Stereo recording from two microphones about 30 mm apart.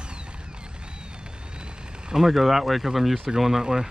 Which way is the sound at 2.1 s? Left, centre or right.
Centre.